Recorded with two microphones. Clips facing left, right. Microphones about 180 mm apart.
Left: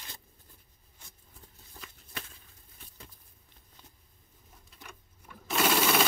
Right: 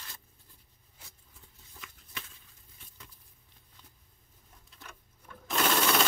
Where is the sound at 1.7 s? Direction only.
40° left (ahead or behind).